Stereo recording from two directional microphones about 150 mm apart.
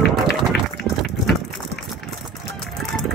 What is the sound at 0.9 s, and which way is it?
Liquid, 20° right (ahead or behind).